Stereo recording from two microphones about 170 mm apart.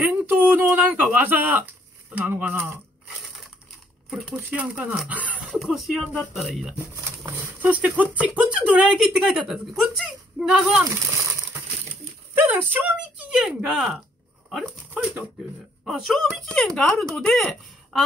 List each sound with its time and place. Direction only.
0.0 s a sound: 10° right (ahead or behind)
2.1 s speech: 10° right (ahead or behind)
4.1 s speech: centre (ahead or behind)
7.1 s speech: 15° right (ahead or behind)
10.8 s a sound: 15° right (ahead or behind)
12.4 s speech: 10° right (ahead or behind)